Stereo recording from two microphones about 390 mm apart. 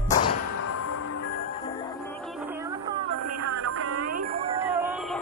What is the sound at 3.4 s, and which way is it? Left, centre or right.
Music, right.